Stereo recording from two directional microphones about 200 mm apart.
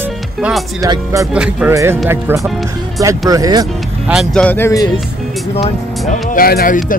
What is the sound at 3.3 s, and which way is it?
Speech, 20° right (ahead or behind).